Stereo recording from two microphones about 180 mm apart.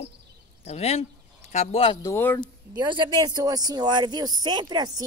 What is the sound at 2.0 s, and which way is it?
Speech, 15° left (ahead or behind).